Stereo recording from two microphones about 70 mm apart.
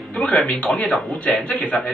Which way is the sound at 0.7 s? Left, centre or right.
Centre.